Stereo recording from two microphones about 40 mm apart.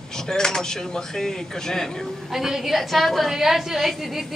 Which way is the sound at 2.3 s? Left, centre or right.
Centre.